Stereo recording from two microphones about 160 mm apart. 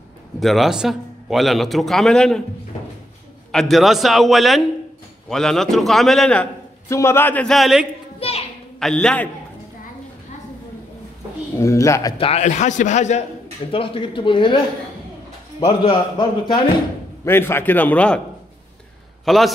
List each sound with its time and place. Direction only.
0.4 s a man's voice: centre (ahead or behind)
3.5 s a man's voice: centre (ahead or behind)
6.9 s a man's voice: 15° left (ahead or behind); by 7.8 s centre (ahead or behind)
8.2 s a sound: 40° left (ahead or behind)
8.7 s a man's voice: 5° left (ahead or behind)
11.5 s a man's voice: 20° left (ahead or behind)
12.2 s a man's voice: 40° left (ahead or behind)
13.7 s speech: 35° left (ahead or behind)
15.6 s a man's voice: 30° left (ahead or behind)
17.2 s a man's voice: 15° left (ahead or behind)
19.2 s a man's voice: centre (ahead or behind)